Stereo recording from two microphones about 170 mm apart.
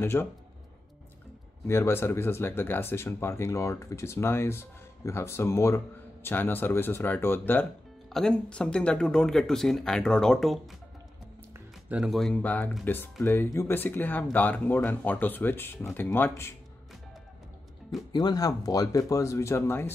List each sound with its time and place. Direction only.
0.0 s speech: 15° left (ahead or behind)
1.7 s speech: 15° left (ahead or behind)
11.9 s speech: centre (ahead or behind); by 16.5 s 15° left (ahead or behind)
18.1 s speech: 20° left (ahead or behind)